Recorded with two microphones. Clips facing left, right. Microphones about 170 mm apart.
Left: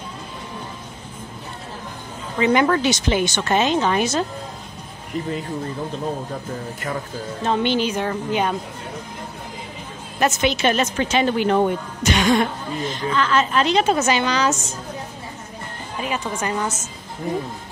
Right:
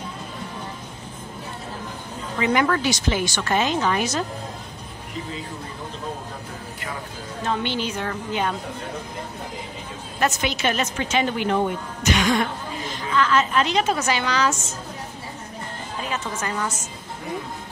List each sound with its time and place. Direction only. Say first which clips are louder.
2.4 s speech: left 4 dB; 25° left (ahead or behind)
7.4 s a woman's voice: left 5 dB; 20° left (ahead or behind)
10.2 s speech: left 4 dB; 25° left (ahead or behind)
16.0 s speech: left 4 dB; 15° left (ahead or behind)